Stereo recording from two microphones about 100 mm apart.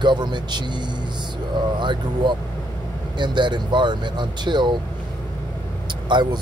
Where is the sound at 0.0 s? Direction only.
50° right (ahead or behind).